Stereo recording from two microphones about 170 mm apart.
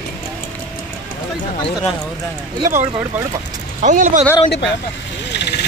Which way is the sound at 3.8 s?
45° right (ahead or behind).